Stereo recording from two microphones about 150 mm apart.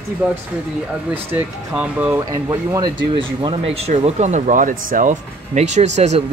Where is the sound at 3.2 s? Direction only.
35° right (ahead or behind).